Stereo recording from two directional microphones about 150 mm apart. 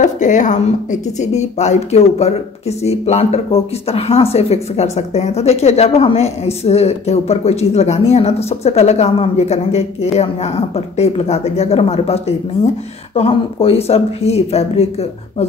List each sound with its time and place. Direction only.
0.0 s a woman's voice: 55° left (ahead or behind)